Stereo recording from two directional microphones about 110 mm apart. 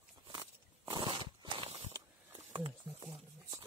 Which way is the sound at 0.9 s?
45° right (ahead or behind).